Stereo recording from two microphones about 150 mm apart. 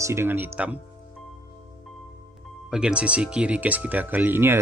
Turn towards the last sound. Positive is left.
turn(degrees=-15)  # may be behind; listen again after turning